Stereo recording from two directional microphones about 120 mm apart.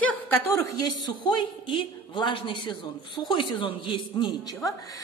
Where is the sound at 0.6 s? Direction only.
30° left (ahead or behind).